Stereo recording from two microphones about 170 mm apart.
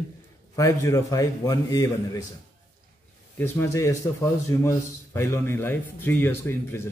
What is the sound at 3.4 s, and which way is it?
A man's voice, 15° left (ahead or behind).